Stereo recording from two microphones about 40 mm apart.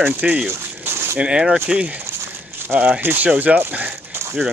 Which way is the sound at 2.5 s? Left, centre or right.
Right.